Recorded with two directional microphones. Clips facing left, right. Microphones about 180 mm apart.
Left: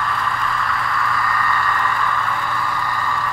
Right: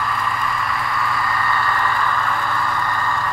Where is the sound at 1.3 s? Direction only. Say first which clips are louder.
Even; 30° right (ahead or behind).